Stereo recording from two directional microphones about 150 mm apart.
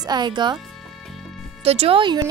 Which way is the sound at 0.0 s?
30° right (ahead or behind).